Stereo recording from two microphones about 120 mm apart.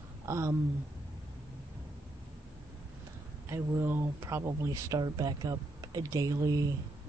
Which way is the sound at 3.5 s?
20° right (ahead or behind).